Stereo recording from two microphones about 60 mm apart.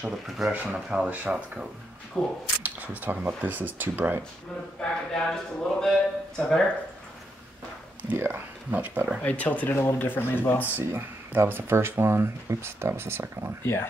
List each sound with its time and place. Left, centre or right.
0.5 s speech: right
0.8 s speech: centre
2.1 s speech: centre
2.6 s speech: right
4.8 s speech: centre
8.1 s speech: right
9.2 s speech: left
9.7 s speech: left
10.8 s speech: right